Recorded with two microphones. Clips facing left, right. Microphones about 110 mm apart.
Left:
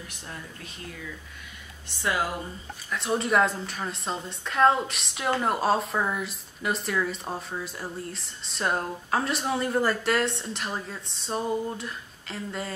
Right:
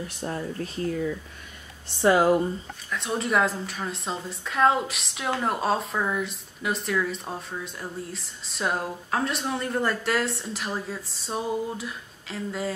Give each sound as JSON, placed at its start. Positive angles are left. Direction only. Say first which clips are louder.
{"t": 0.2, "sound": "speech", "louder": "right 13 dB", "side_deg": -35}
{"t": 2.9, "sound": "a woman's voice", "louder": "left 1 dB", "side_deg": 0}